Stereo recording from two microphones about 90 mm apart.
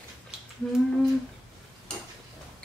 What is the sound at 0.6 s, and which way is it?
Speech, 10° left (ahead or behind).